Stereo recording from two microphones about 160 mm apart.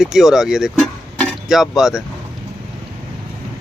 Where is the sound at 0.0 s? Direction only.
5° right (ahead or behind).